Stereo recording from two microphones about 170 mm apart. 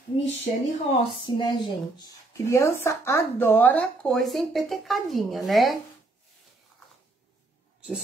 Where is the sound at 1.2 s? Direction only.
25° left (ahead or behind).